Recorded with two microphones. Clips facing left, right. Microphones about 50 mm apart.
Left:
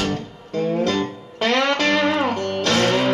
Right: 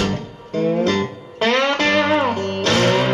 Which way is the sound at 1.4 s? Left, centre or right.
Centre.